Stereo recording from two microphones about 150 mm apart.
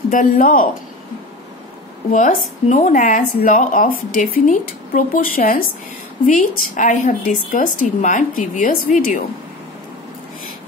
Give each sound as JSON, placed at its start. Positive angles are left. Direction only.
{"t": 0.1, "sound": "speech", "side_deg": 65}
{"t": 2.0, "sound": "speech", "side_deg": 55}